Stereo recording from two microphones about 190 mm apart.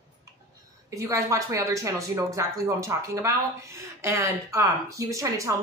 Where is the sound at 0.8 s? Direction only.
15° right (ahead or behind).